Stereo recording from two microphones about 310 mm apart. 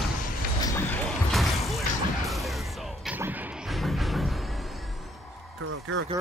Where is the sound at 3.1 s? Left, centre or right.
Centre.